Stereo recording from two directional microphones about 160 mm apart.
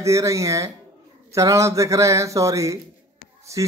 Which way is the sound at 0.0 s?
20° right (ahead or behind).